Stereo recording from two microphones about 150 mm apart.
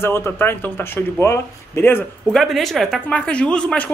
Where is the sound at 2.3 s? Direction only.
Centre (ahead or behind).